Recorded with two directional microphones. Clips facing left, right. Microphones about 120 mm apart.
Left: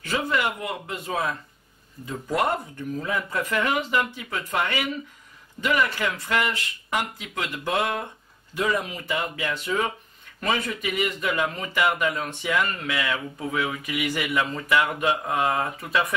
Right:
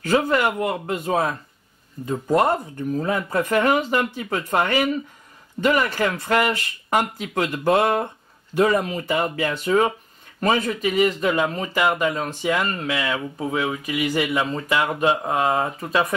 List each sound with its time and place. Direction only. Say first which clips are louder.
0.0 s speech: right 6 dB; 45° right (ahead or behind)